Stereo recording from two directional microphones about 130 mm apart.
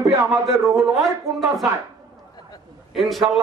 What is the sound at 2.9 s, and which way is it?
Speech, centre (ahead or behind).